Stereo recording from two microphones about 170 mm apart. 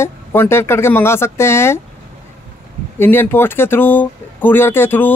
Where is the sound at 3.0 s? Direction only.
10° left (ahead or behind).